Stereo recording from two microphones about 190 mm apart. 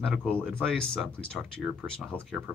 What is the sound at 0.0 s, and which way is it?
Speech, 5° left (ahead or behind).